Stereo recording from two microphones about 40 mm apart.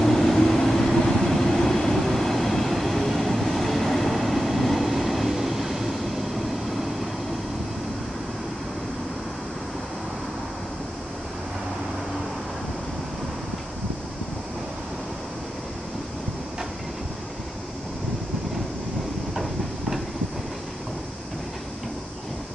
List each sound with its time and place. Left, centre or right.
0.0 s vehicle: centre